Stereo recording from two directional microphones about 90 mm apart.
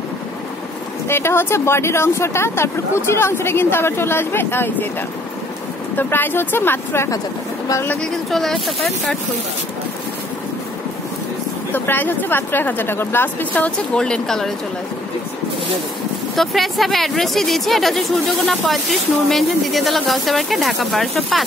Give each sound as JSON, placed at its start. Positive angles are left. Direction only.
{"t": 1.0, "sound": "speech", "side_deg": 30}
{"t": 5.9, "sound": "speech", "side_deg": 25}
{"t": 8.3, "sound": "speech", "side_deg": 5}
{"t": 11.7, "sound": "speech", "side_deg": 20}
{"t": 16.3, "sound": "speech", "side_deg": 0}